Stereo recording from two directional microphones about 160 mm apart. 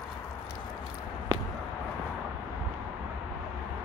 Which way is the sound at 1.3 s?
25° right (ahead or behind).